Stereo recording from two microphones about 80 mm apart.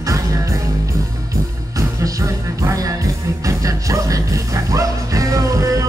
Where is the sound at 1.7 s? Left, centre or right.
Right.